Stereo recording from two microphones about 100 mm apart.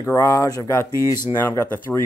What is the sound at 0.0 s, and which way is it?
Speech, 30° left (ahead or behind).